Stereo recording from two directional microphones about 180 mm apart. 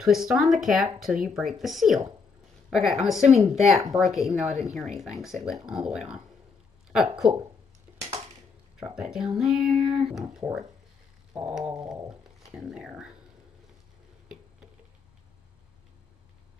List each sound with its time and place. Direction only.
0.0 s speech: centre (ahead or behind)
4.5 s a woman's voice: 35° right (ahead or behind)
4.7 s speech: centre (ahead or behind)
8.7 s speech: 5° right (ahead or behind)